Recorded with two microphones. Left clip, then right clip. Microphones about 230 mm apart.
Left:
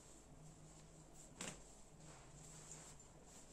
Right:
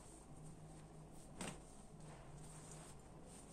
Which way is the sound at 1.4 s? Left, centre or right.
Centre.